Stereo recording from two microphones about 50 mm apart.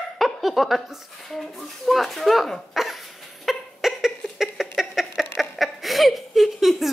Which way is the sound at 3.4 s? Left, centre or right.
Centre.